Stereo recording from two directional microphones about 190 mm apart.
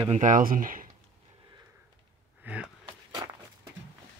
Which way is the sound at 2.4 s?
5° right (ahead or behind).